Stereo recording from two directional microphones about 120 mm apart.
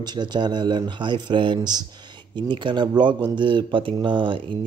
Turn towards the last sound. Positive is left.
turn(degrees=-45)  # may be behind; listen again after turning